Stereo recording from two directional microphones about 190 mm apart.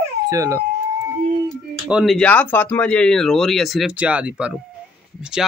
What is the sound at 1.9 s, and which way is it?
Speech, centre (ahead or behind).